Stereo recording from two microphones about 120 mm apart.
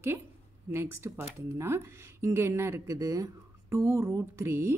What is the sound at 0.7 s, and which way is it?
Speech, 20° right (ahead or behind).